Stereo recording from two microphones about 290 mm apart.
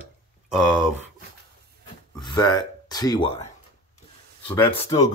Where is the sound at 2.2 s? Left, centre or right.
Centre.